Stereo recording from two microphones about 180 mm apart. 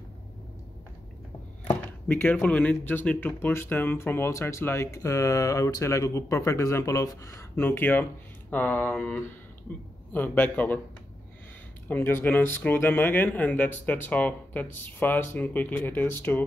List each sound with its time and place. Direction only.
1.7 s speech: 10° left (ahead or behind)
11.9 s speech: 10° left (ahead or behind)